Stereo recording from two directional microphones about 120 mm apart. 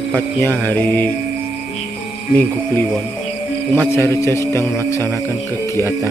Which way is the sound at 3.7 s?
20° left (ahead or behind).